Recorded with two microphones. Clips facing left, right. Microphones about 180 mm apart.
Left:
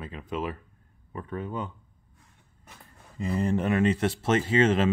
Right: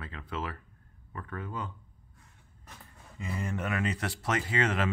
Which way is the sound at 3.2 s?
35° left (ahead or behind).